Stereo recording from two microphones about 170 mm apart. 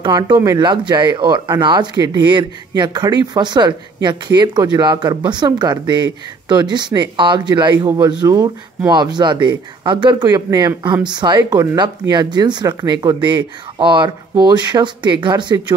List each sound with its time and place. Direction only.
0.0 s speech: 25° right (ahead or behind)